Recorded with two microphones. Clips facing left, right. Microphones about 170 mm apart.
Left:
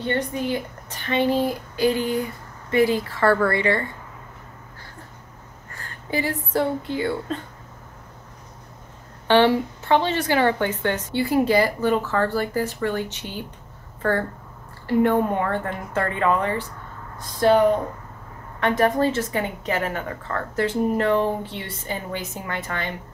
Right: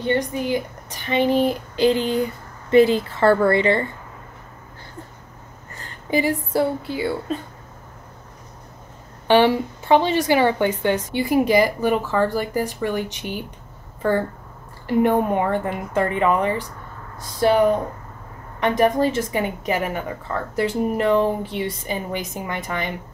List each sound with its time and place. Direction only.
0.0 s speech: 15° right (ahead or behind)
5.8 s speech: 15° right (ahead or behind)
9.3 s a woman's voice: 15° right (ahead or behind)
14.9 s a woman's voice: 15° right (ahead or behind)
18.6 s a woman's voice: 15° right (ahead or behind)